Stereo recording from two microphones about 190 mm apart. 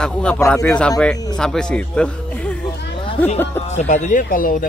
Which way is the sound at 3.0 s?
35° left (ahead or behind).